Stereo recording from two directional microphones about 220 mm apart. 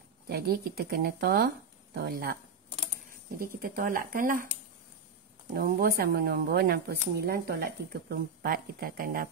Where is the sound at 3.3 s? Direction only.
40° right (ahead or behind).